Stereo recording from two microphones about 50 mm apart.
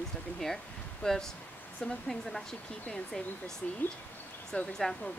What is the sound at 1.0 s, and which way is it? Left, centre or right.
Speech, centre.